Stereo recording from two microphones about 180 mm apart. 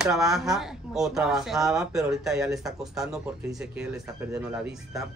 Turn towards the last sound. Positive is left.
turn(degrees=-5)  # may be behind; listen again after turning